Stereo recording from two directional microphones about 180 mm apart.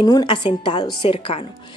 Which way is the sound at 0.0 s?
25° left (ahead or behind).